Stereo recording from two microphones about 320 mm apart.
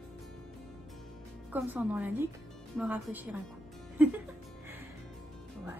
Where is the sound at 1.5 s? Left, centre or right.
Centre.